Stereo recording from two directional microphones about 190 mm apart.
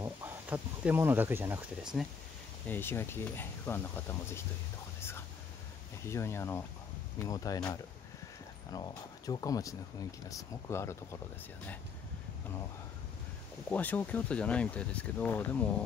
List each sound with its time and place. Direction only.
0.0 s speech: 10° right (ahead or behind)
2.7 s speech: 10° left (ahead or behind)
6.0 s speech: 15° left (ahead or behind)
13.7 s speech: 10° left (ahead or behind)